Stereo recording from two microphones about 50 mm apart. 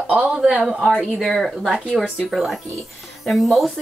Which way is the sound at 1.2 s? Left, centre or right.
Centre.